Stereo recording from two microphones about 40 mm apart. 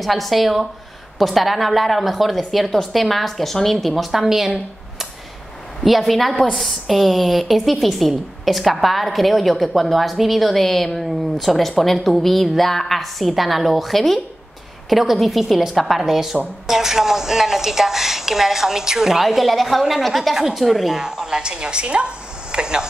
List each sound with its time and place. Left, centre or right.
0.0 s a woman's voice: centre